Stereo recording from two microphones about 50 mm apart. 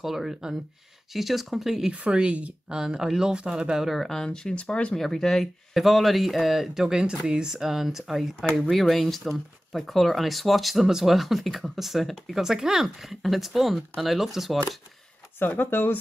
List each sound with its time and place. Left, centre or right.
0.0 s speech: centre
1.9 s speech: centre
2.7 s speech: centre
3.9 s speech: centre; by 4.9 s left
4.9 s speech: centre
15.3 s speech: left